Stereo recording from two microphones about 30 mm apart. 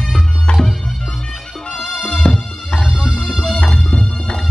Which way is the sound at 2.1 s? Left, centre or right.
Left.